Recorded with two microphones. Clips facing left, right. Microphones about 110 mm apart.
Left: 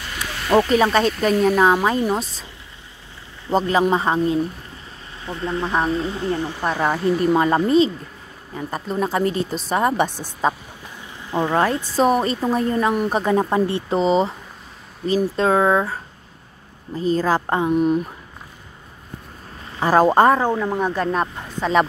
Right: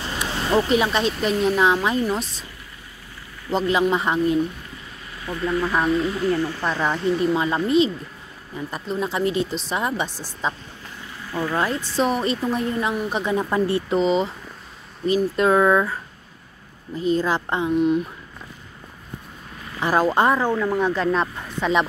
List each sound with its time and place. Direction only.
0.0 s a sound: 25° right (ahead or behind)
0.6 s speech: 40° left (ahead or behind)
3.5 s speech: 40° left (ahead or behind); by 6.8 s 15° left (ahead or behind)
7.3 s speech: 50° left (ahead or behind)
11.2 s speech: 20° left (ahead or behind)
11.8 s speech: 45° left (ahead or behind)
13.5 s speech: 30° left (ahead or behind)
19.8 s speech: 40° left (ahead or behind)
20.4 s speech: 25° left (ahead or behind)
20.8 s speech: 40° left (ahead or behind)